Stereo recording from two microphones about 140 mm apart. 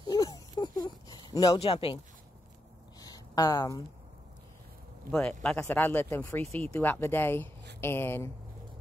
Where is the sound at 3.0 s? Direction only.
25° left (ahead or behind).